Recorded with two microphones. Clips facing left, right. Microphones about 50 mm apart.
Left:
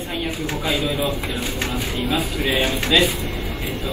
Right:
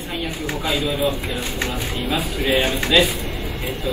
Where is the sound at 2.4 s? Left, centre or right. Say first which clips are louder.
Right 4 dB; right.